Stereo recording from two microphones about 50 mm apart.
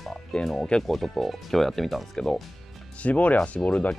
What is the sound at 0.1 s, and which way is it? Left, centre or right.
Music, centre.